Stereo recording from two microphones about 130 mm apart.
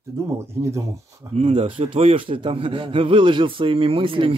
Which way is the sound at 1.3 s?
45° right (ahead or behind).